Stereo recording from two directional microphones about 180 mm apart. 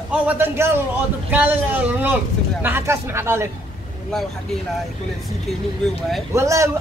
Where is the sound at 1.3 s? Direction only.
10° right (ahead or behind).